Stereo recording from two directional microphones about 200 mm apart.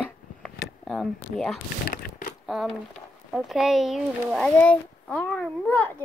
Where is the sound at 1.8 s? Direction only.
45° left (ahead or behind).